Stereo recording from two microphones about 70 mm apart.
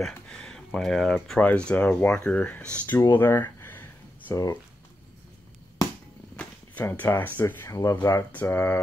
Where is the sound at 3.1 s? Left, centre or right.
Left.